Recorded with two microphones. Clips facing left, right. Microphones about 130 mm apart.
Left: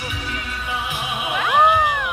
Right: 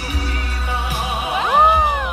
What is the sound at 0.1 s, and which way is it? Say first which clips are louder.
Music: right 3 dB; 40° right (ahead or behind).